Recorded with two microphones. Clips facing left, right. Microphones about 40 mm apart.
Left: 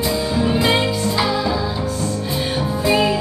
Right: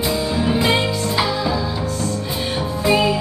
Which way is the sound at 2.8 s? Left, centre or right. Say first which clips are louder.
Right 1 dB; centre.